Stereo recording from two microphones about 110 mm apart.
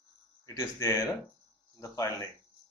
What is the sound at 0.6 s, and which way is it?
Speech, 30° left (ahead or behind).